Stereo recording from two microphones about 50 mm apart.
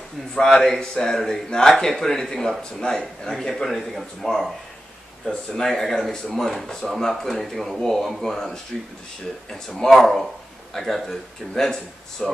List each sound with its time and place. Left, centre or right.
0.3 s speech: centre
5.2 s speech: left
5.6 s speech: centre
9.8 s speech: centre